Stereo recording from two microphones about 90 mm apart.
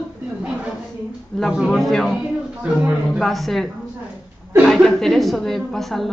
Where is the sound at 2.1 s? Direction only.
20° right (ahead or behind).